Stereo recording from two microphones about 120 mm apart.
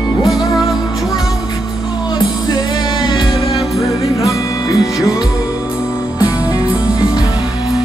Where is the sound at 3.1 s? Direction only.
45° left (ahead or behind).